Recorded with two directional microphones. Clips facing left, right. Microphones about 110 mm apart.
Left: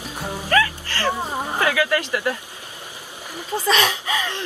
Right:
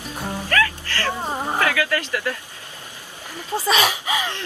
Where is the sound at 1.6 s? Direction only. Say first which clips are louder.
Left 3 dB; 20° left (ahead or behind).